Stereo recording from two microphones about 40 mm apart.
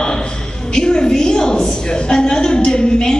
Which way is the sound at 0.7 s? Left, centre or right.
Centre.